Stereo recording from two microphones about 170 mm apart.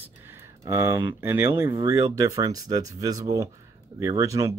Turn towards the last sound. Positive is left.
turn(degrees=-20)  # may be behind; listen again after turning